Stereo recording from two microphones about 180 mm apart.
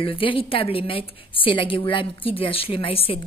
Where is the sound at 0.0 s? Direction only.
30° left (ahead or behind).